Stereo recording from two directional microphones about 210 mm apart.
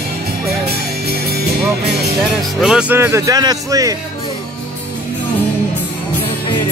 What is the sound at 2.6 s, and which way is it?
Speech, 5° right (ahead or behind).